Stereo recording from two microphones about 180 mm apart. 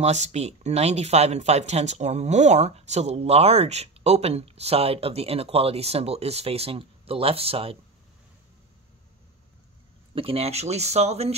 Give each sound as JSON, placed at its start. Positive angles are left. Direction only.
{"t": 0.0, "sound": "speech", "side_deg": -40}
{"t": 10.1, "sound": "speech", "side_deg": -30}